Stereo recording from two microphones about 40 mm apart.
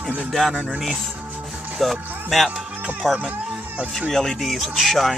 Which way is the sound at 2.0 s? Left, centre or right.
Right.